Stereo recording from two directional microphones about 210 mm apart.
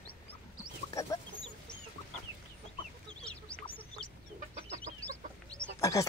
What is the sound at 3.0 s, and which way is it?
Goose, 5° left (ahead or behind).